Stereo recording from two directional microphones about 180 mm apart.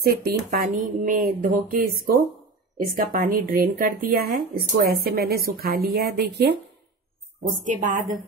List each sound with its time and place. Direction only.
0.0 s a woman's voice: 60° right (ahead or behind)
7.6 s a woman's voice: 45° right (ahead or behind)